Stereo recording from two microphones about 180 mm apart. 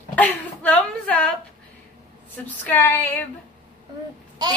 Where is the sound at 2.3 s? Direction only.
10° left (ahead or behind).